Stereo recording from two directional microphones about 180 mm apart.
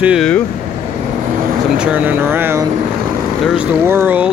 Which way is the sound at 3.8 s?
10° right (ahead or behind).